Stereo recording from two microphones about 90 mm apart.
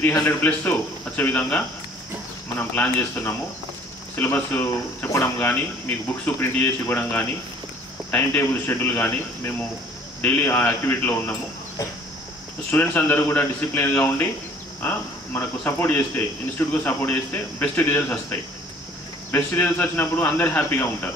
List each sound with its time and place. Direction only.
0.2 s speech: 20° left (ahead or behind)
2.7 s speech: 20° left (ahead or behind)
12.7 s speech: 20° left (ahead or behind)
19.3 s speech: 20° left (ahead or behind)